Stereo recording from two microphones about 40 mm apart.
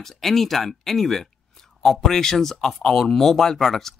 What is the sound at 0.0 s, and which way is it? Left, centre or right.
Speech, centre.